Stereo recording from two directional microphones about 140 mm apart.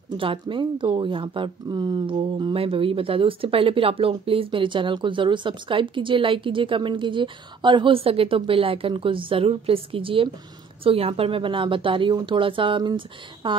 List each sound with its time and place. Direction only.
0.2 s speech: 40° right (ahead or behind)